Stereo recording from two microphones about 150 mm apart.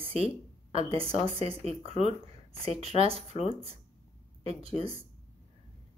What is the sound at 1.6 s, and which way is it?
Speech, 45° left (ahead or behind).